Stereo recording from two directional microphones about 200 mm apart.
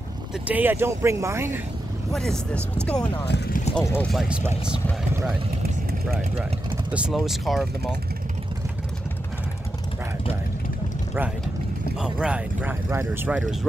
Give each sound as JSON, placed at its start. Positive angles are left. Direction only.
{"t": 0.5, "sound": "speech", "side_deg": -10}
{"t": 2.1, "sound": "speech", "side_deg": 0}
{"t": 3.3, "sound": "speech", "side_deg": 55}
{"t": 3.8, "sound": "speech", "side_deg": 10}
{"t": 4.1, "sound": "speech", "side_deg": -5}
{"t": 6.9, "sound": "speech", "side_deg": -5}
{"t": 12.0, "sound": "speech", "side_deg": -5}